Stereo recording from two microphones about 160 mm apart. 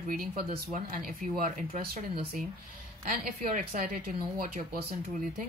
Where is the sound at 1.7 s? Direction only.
40° right (ahead or behind).